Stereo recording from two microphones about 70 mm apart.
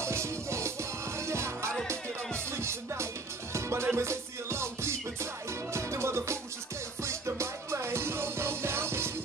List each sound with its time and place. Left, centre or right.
0.0 s music: right